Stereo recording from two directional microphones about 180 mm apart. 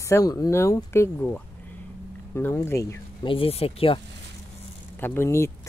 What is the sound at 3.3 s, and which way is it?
Speech, 30° left (ahead or behind).